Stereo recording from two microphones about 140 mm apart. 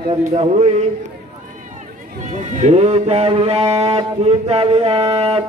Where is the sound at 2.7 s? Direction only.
50° right (ahead or behind).